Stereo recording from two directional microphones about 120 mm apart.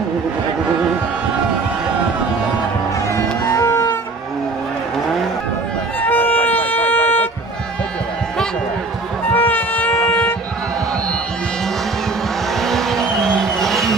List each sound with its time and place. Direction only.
3.4 s music: 25° left (ahead or behind)
5.9 s violin: 15° left (ahead or behind)
9.3 s music: 15° left (ahead or behind)
12.5 s vehicle: 5° left (ahead or behind)